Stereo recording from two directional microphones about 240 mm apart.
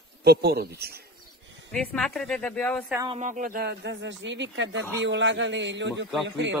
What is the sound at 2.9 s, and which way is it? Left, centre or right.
Speech, centre.